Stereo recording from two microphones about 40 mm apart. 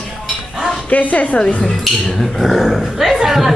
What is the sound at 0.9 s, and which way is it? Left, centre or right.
Speech, left.